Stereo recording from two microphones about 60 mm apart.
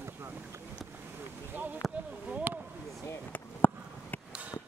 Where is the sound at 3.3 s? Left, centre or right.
Left.